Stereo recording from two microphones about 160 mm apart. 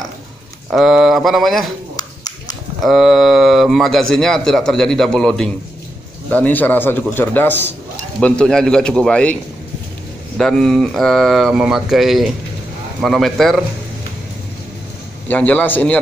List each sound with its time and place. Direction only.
0.7 s speech: centre (ahead or behind)
2.0 s a sound: 25° left (ahead or behind)
2.8 s a man's voice: centre (ahead or behind)
15.2 s a man's voice: 10° left (ahead or behind)